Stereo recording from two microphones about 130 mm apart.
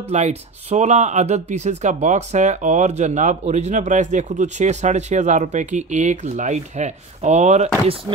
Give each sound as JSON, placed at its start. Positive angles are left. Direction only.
{"t": 0.1, "sound": "speech", "side_deg": -60}